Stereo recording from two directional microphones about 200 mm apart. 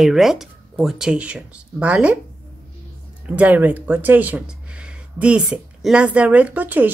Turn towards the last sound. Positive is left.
turn(degrees=-10)  # may be behind; listen again after turning